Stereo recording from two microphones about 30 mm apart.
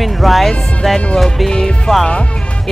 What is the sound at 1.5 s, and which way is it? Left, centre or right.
Music, left.